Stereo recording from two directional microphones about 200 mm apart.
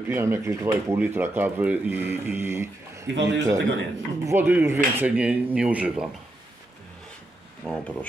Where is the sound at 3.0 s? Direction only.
65° right (ahead or behind).